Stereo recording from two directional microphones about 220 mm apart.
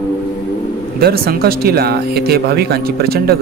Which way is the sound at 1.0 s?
45° right (ahead or behind).